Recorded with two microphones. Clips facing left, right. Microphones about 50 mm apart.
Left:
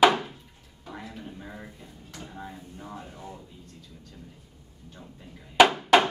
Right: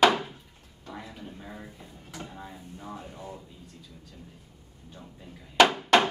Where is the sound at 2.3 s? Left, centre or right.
Centre.